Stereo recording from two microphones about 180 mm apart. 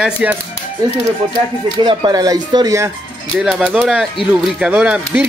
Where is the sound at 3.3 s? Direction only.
5° right (ahead or behind).